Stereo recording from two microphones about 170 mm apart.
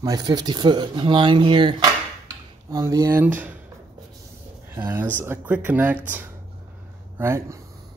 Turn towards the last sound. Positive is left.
turn(degrees=-15)  # may be behind; listen again after turning